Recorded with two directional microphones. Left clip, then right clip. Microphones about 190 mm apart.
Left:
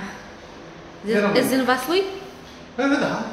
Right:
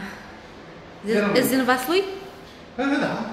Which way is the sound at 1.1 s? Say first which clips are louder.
Left 1 dB; 5° right (ahead or behind).